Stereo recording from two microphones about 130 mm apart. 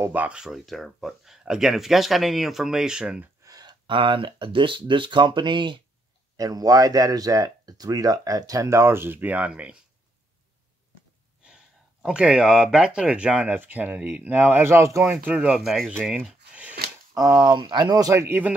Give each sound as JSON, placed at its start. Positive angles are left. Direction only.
{"t": 0.0, "sound": "speech", "side_deg": -15}
{"t": 3.4, "sound": "speech", "side_deg": -30}
{"t": 6.3, "sound": "speech", "side_deg": -30}
{"t": 11.4, "sound": "speech", "side_deg": -5}
{"t": 15.2, "sound": "speech", "side_deg": -10}
{"t": 15.9, "sound": "speech", "side_deg": -15}
{"t": 17.1, "sound": "speech", "side_deg": -30}